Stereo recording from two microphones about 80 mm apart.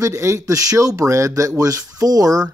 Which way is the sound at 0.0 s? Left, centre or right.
Right.